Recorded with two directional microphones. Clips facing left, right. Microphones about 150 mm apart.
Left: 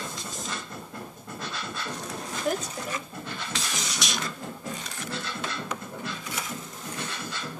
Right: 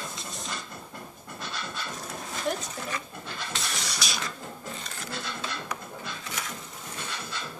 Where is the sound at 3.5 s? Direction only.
Centre (ahead or behind).